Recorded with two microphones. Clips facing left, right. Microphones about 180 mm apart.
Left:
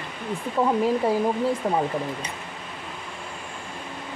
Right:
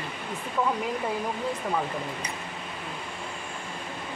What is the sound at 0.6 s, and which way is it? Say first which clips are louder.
Speech: left 4 dB; 35° left (ahead or behind).